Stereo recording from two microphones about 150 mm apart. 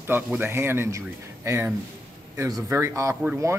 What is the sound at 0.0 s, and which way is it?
Speech, 15° right (ahead or behind).